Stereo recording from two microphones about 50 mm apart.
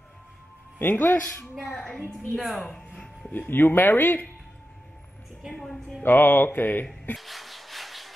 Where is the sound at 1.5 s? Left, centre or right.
Centre.